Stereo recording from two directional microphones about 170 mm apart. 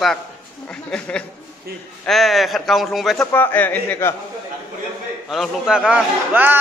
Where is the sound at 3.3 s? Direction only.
10° left (ahead or behind).